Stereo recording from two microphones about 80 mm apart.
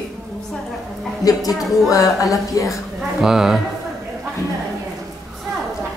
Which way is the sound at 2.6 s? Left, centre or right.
Left.